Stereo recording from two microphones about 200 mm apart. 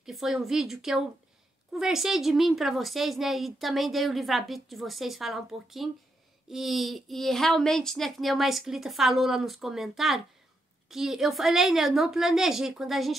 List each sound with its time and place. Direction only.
0.0 s a woman's voice: centre (ahead or behind)